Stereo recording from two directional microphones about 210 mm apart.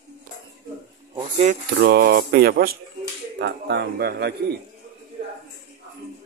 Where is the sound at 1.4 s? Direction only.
40° right (ahead or behind).